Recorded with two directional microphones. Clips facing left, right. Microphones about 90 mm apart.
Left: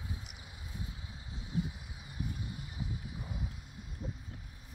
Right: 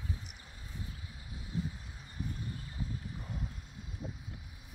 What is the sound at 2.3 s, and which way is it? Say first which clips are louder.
Horse: even; 15° left (ahead or behind).